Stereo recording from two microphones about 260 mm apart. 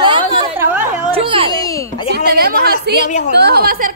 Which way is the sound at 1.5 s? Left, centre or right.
Centre.